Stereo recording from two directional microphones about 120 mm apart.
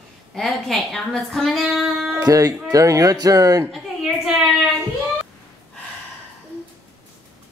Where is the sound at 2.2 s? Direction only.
30° right (ahead or behind).